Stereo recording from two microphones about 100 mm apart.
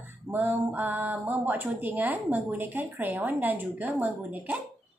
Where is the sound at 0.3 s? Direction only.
20° right (ahead or behind).